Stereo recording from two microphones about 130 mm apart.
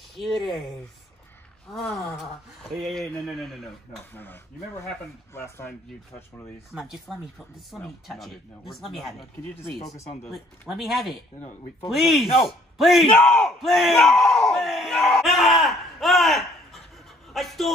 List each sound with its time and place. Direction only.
0.2 s battle cry: centre (ahead or behind)
1.7 s battle cry: centre (ahead or behind)
4.1 s speech: 15° left (ahead or behind)
6.7 s battle cry: centre (ahead or behind)
10.3 s battle cry: centre (ahead or behind)